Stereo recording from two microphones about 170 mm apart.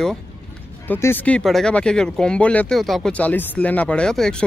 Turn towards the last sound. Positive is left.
turn(degrees=5)  # may be behind; listen again after turning